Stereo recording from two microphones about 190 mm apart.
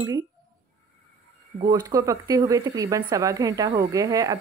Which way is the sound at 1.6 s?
20° right (ahead or behind).